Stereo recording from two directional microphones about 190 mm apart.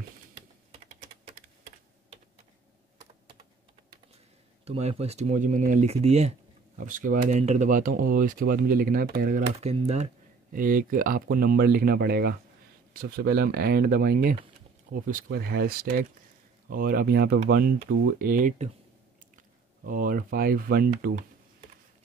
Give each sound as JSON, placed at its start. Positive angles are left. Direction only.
{"t": 4.6, "sound": "speech", "side_deg": -35}
{"t": 9.6, "sound": "speech", "side_deg": -35}
{"t": 19.9, "sound": "speech", "side_deg": -45}